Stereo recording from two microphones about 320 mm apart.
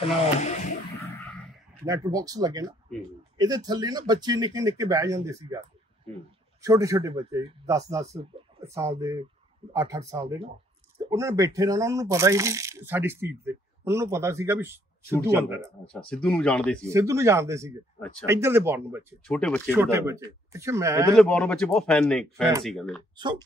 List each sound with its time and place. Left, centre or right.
0.0 s a sound: centre
1.0 s a sound: centre
1.9 s speech: centre
6.6 s speech: centre
16.8 s speech: centre
19.3 s speech: centre
19.7 s speech: centre
21.2 s speech: centre